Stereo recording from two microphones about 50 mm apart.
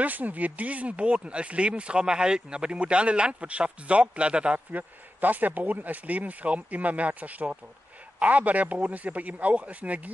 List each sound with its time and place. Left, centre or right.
0.0 s speech: right
4.7 s speech: right